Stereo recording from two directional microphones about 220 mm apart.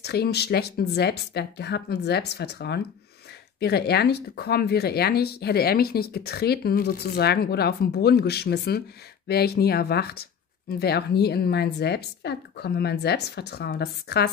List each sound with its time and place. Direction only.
0.0 s speech: 50° left (ahead or behind)